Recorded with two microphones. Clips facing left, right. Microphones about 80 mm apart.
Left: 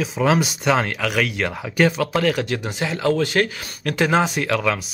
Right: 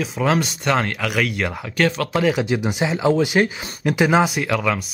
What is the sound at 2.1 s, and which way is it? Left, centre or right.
Speech, centre.